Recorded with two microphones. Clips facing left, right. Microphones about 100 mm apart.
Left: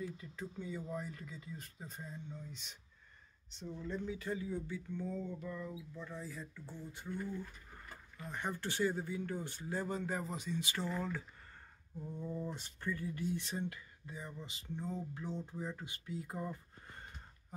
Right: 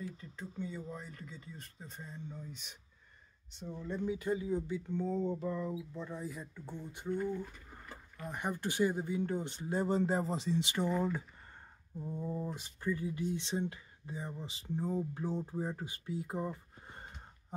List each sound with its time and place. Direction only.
0.2 s speech: 5° left (ahead or behind)
3.5 s speech: 15° right (ahead or behind)
5.0 s speech: 30° right (ahead or behind); by 13.2 s 15° right (ahead or behind)
13.4 s speech: 25° right (ahead or behind)
16.8 s gasp: 30° right (ahead or behind)